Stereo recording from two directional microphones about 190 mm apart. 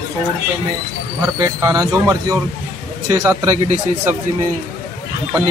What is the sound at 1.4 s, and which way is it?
A man's voice, 15° right (ahead or behind).